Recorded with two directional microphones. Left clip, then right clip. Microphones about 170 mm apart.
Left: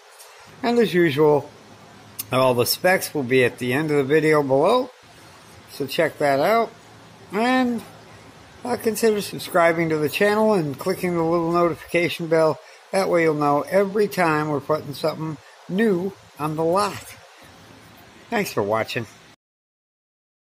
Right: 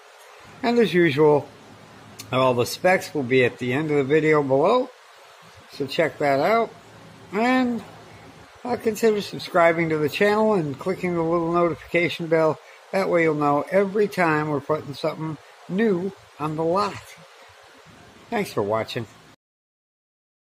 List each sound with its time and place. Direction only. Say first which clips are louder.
0.6 s speech: even; centre (ahead or behind)
18.3 s speech: left 2 dB; centre (ahead or behind)